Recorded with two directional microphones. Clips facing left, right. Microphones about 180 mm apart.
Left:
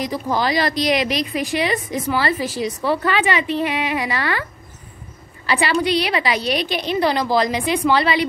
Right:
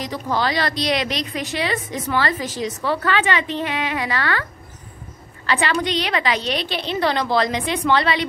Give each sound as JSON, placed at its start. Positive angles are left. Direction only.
{"t": 0.0, "sound": "a woman's voice", "side_deg": 10}
{"t": 5.5, "sound": "a woman's voice", "side_deg": 10}